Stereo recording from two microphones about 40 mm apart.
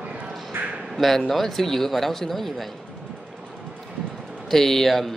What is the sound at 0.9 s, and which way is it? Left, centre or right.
Speech, centre.